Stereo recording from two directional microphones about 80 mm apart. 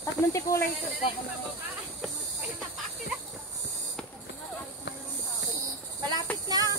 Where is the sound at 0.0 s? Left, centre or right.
Left.